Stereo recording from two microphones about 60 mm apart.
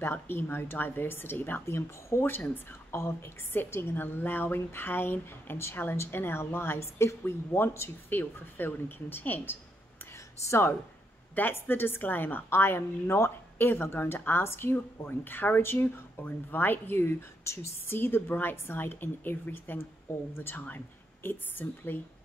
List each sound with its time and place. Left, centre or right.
0.0 s a woman's voice: left
2.2 s a woman's voice: left
10.4 s speech: left
11.3 s a woman's voice: left